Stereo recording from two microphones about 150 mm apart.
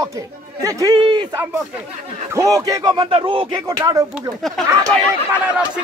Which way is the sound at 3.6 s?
20° right (ahead or behind).